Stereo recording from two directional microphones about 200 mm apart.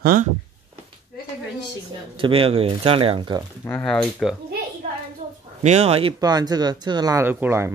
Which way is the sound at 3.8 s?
Centre (ahead or behind).